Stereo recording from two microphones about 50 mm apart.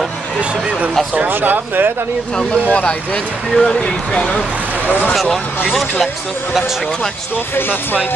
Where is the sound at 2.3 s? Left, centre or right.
Left.